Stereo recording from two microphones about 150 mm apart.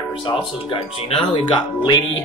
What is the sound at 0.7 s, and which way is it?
Speech, 40° left (ahead or behind).